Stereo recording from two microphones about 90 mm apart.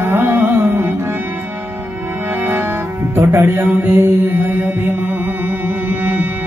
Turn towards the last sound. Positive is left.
turn(degrees=-20)  # may be behind; listen again after turning